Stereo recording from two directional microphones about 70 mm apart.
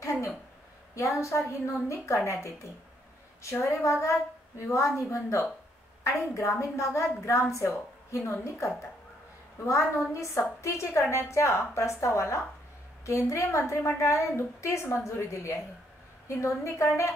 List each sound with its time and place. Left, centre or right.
0.9 s a woman's voice: left
10.1 s a woman's voice: left